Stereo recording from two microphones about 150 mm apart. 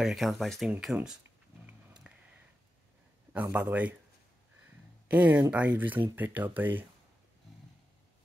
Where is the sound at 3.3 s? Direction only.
10° right (ahead or behind).